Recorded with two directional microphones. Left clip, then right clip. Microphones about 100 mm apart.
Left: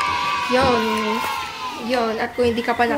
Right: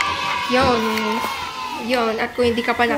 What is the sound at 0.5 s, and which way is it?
Speech, 5° left (ahead or behind).